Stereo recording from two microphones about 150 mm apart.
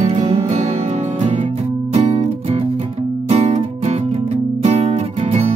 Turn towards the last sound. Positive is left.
turn(degrees=-40)  # may be behind; listen again after turning